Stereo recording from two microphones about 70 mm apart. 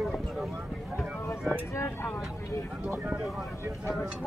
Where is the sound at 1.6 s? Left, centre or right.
Left.